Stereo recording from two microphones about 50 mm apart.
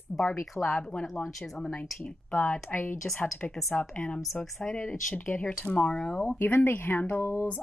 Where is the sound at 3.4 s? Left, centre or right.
Left.